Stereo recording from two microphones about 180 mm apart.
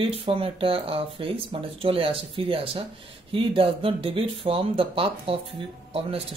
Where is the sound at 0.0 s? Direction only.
30° right (ahead or behind).